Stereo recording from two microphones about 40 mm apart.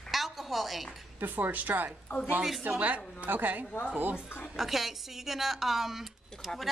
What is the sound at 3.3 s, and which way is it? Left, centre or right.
Speech, right.